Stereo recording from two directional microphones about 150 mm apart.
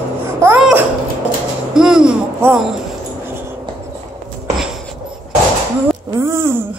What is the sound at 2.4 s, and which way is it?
Speech, 10° right (ahead or behind).